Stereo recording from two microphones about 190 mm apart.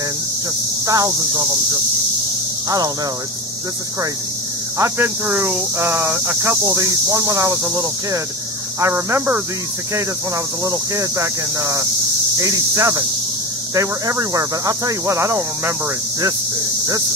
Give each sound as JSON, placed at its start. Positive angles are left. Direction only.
{"t": 0.8, "sound": "speech", "side_deg": -20}
{"t": 4.7, "sound": "speech", "side_deg": -15}
{"t": 10.6, "sound": "speech", "side_deg": -20}